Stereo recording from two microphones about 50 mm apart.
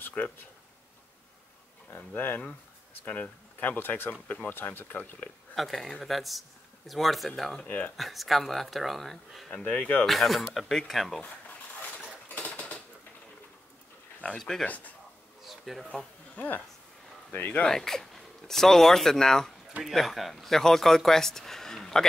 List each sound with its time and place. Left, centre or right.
2.0 s speech: left
5.6 s speech: centre
7.6 s speech: left
8.0 s speech: centre
9.5 s speech: left
10.0 s speech: centre
12.3 s a sound: left
15.4 s a sound: centre
16.3 s speech: left
17.6 s speech: centre